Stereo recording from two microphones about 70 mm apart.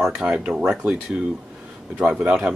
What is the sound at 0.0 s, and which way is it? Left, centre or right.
Speech, centre.